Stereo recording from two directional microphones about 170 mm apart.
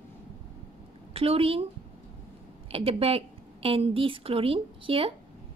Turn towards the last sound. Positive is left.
turn(degrees=-35)  # may be behind; listen again after turning